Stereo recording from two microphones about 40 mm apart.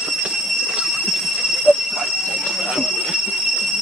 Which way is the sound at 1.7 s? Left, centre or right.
Centre.